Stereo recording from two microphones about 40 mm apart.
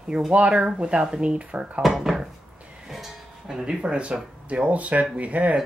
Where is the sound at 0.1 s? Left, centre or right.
Centre.